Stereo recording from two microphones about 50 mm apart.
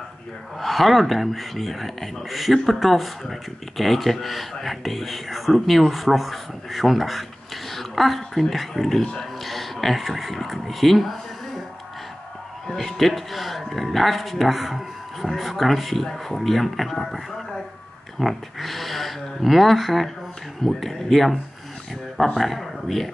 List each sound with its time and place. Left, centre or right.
0.6 s speech: centre
12.6 s speech: centre
22.4 s speech: centre